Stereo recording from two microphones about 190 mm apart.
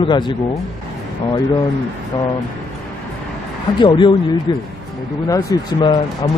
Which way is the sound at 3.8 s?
25° left (ahead or behind).